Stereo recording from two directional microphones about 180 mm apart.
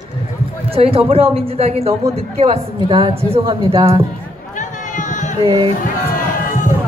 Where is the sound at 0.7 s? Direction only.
30° right (ahead or behind).